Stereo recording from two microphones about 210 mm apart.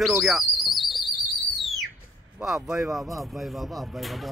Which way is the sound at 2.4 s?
5° right (ahead or behind).